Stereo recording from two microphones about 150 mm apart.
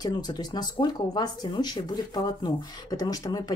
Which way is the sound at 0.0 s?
25° left (ahead or behind).